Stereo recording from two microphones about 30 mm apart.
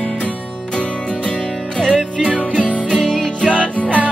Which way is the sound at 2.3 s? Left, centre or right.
Right.